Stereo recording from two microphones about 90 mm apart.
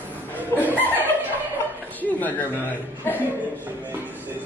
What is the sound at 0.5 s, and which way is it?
Chuckle, 35° left (ahead or behind).